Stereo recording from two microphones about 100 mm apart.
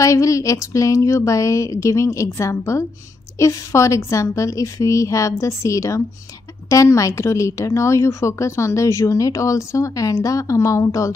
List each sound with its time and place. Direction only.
0.0 s a woman's voice: 30° left (ahead or behind)